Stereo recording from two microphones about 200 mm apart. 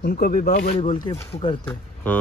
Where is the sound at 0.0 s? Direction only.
50° left (ahead or behind).